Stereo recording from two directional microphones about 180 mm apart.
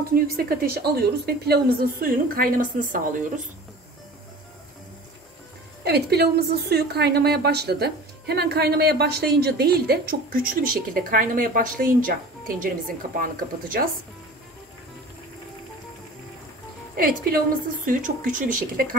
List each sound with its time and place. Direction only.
0.1 s a woman's voice: 55° right (ahead or behind)
5.9 s a woman's voice: 65° right (ahead or behind)
16.9 s a woman's voice: 55° right (ahead or behind)